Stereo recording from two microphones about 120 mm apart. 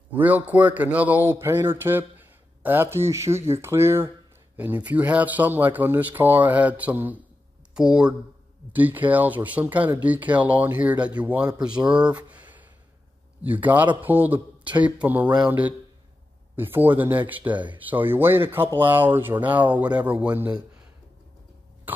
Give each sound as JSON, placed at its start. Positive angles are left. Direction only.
{"t": 0.1, "sound": "speech", "side_deg": -15}